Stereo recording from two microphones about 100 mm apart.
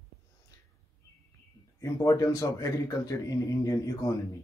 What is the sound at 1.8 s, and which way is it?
A man's voice, 30° left (ahead or behind).